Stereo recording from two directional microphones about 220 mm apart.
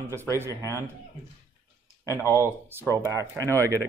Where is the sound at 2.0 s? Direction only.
15° left (ahead or behind).